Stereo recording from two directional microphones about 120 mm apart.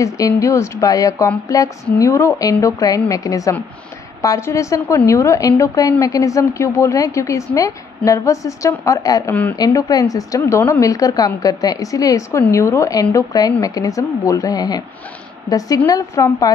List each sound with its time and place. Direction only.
0.0 s a woman's voice: 25° left (ahead or behind)
9.3 s speech: 15° left (ahead or behind)
9.6 s a woman's voice: 30° left (ahead or behind)
15.9 s a woman's voice: 30° left (ahead or behind)